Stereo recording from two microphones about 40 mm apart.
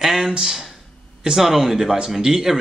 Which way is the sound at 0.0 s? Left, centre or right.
Centre.